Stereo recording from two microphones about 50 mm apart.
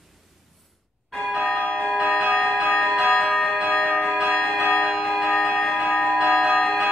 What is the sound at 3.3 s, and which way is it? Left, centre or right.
Church bell, centre.